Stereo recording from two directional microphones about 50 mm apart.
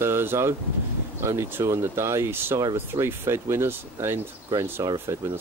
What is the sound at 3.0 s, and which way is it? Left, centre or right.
Speech, right.